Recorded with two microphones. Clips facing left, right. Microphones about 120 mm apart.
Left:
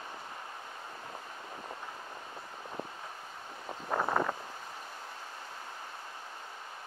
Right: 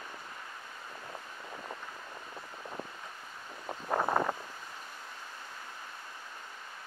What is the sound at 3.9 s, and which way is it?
Wind, 20° right (ahead or behind).